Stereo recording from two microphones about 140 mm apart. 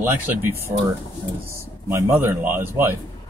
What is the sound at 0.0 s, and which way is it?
Speech, 15° right (ahead or behind).